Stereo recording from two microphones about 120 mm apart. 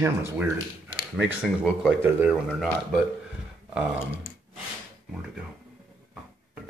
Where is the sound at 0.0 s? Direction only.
20° right (ahead or behind).